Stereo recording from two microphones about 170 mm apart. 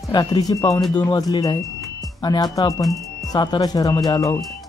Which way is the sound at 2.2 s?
25° left (ahead or behind).